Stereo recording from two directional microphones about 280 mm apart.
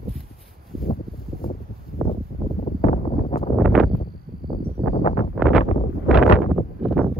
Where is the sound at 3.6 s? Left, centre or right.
Centre.